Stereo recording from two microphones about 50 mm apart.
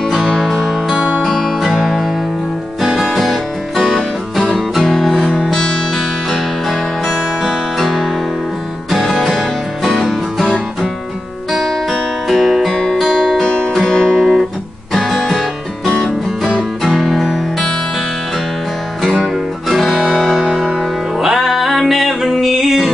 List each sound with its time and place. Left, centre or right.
0.4 s music: centre
0.9 s music: right
1.2 s music: centre
3.1 s music: centre
8.9 s music: centre
11.9 s music: centre
12.7 s music: centre
15.3 s music: centre
19.7 s music: centre
20.0 s music: centre
21.2 s music: centre